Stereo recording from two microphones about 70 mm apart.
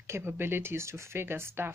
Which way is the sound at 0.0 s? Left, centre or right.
Right.